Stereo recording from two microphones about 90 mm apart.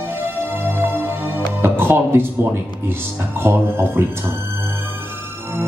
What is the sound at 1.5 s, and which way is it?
Speech, 25° right (ahead or behind).